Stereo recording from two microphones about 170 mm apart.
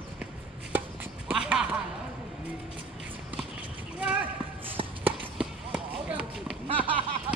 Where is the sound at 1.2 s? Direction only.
5° right (ahead or behind).